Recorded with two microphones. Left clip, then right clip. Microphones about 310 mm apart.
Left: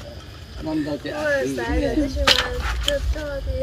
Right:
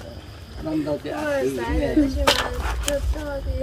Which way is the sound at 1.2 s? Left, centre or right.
Right.